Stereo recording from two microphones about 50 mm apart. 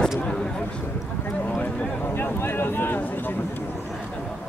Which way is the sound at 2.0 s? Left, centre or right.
Left.